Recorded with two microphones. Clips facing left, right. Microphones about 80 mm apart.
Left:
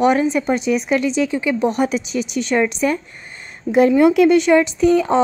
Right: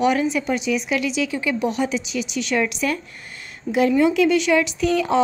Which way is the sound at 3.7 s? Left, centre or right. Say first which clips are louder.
Left 5 dB; left.